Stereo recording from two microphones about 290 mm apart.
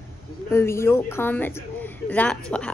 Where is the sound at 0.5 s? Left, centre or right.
Centre.